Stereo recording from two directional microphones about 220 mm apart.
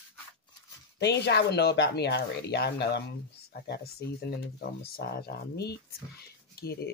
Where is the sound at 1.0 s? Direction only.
50° left (ahead or behind).